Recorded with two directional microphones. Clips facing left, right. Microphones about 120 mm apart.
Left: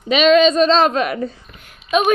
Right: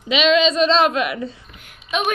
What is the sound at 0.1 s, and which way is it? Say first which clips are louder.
A woman's voice: left 4 dB; 45° left (ahead or behind).